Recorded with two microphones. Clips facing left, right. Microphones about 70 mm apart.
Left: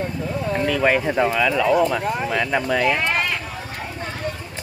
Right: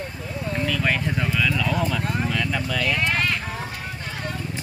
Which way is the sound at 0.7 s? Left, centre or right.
Centre.